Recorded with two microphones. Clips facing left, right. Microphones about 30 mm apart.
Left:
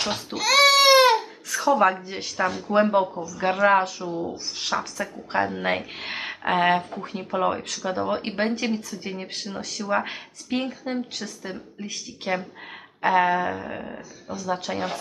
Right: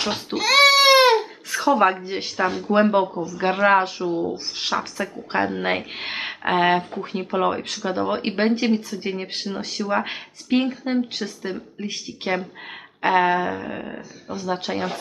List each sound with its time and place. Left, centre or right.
0.0 s babbling: centre
2.0 s speech: right
3.2 s speech: right
14.3 s speech: right